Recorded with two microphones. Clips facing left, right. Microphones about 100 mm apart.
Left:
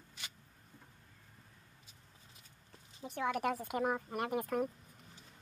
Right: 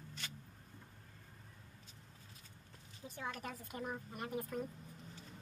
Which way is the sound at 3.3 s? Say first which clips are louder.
Left 11 dB; 75° left (ahead or behind).